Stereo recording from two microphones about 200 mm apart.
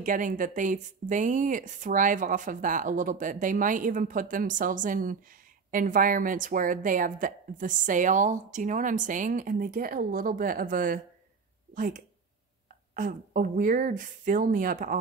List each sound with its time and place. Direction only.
0.0 s a woman's voice: 40° right (ahead or behind)